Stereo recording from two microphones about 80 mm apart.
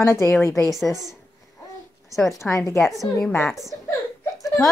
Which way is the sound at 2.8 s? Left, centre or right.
Centre.